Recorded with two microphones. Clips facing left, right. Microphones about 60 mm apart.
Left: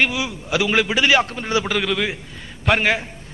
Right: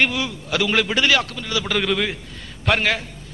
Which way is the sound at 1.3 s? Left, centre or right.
Left.